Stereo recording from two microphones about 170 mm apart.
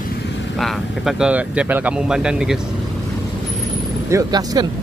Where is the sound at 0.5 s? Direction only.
Centre (ahead or behind).